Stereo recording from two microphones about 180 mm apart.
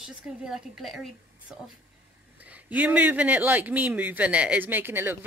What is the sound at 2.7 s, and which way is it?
Speech, 10° right (ahead or behind).